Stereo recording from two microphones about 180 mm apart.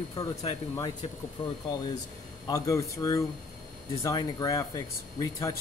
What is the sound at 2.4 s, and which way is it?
Speech, 20° left (ahead or behind).